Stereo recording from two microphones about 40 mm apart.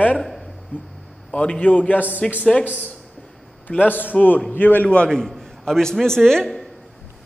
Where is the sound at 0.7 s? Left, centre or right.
Left.